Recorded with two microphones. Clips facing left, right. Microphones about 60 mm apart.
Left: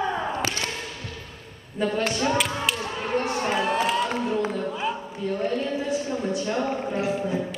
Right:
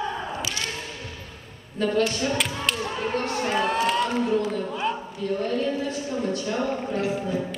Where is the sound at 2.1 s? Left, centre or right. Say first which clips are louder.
Left 2 dB; centre.